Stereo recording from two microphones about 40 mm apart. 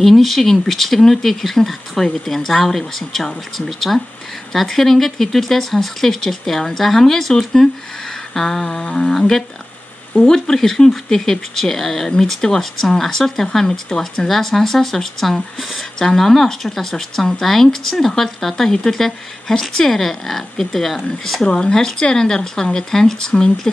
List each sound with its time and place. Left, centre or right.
0.0 s speech: centre
10.1 s speech: centre
21.5 s speech: centre